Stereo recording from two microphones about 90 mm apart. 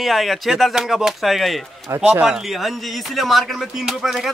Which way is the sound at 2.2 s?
5° right (ahead or behind).